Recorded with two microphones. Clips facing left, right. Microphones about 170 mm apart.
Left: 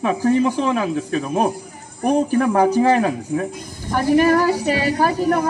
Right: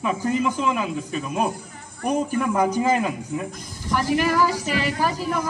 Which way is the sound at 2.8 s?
65° left (ahead or behind).